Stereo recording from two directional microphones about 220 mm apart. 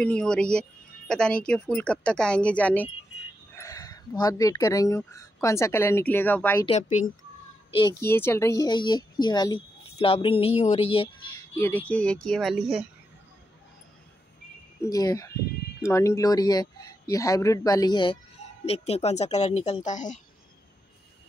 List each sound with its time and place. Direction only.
0.0 s speech: 5° left (ahead or behind)
6.6 s speech: 30° left (ahead or behind)
7.7 s a woman's voice: 15° left (ahead or behind)
11.5 s speech: 10° left (ahead or behind)
14.8 s a woman's voice: 15° left (ahead or behind); by 20.2 s 35° left (ahead or behind)